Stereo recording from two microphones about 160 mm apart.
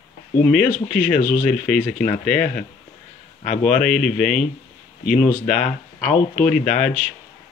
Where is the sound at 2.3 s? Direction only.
60° left (ahead or behind).